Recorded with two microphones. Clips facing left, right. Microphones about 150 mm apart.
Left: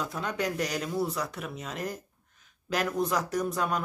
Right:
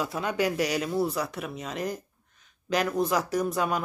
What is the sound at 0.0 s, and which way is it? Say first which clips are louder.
Speech: right 4 dB; 5° right (ahead or behind).